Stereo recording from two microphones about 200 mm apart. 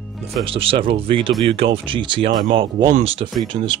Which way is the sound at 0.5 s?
25° right (ahead or behind).